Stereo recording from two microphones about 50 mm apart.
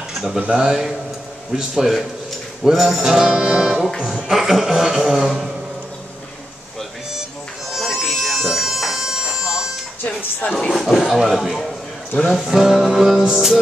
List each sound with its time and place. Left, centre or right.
0.6 s a man's voice: centre
7.7 s bagpipes: centre
9.4 s music: centre
10.5 s speech: centre
10.8 s speech: centre
12.5 s a man's voice: centre